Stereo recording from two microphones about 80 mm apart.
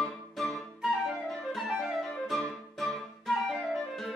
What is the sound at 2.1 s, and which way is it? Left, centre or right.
Flute, centre.